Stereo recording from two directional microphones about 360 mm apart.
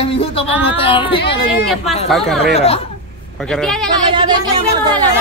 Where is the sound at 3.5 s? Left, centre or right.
Centre.